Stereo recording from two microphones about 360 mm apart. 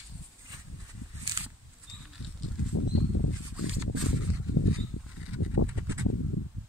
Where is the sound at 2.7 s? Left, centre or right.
Left.